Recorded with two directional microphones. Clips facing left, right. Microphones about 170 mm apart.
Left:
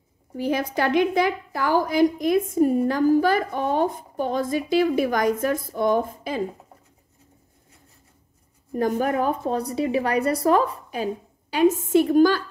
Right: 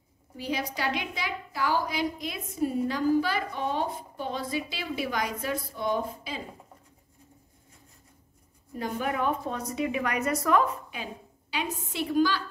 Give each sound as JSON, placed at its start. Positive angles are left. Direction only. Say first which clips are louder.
{"t": 0.4, "sound": "a woman's voice", "louder": "left 8 dB", "side_deg": 50}
{"t": 8.7, "sound": "a woman's voice", "louder": "left 8 dB", "side_deg": 45}